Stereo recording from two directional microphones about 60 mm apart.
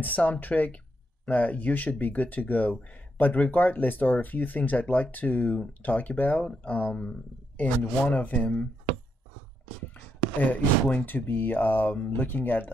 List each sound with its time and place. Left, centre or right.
0.0 s speech: left
6.4 s speech: centre
10.4 s speech: left